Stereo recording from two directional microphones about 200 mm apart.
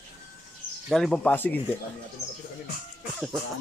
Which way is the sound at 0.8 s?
Centre (ahead or behind).